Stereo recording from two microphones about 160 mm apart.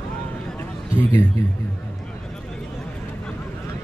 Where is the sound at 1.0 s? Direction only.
15° left (ahead or behind).